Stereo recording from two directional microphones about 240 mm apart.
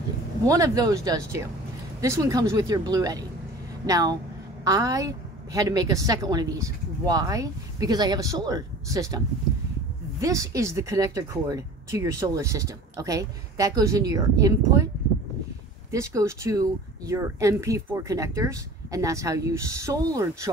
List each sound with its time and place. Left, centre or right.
0.5 s speech: centre
10.2 s speech: centre
15.9 s speech: centre